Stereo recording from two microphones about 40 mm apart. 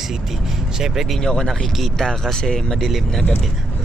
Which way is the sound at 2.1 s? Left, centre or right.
Centre.